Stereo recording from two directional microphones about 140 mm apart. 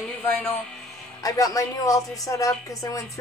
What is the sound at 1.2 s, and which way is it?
A woman's voice, 25° left (ahead or behind).